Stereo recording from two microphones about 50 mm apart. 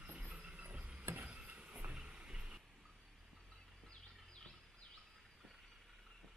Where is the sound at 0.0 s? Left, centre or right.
Right.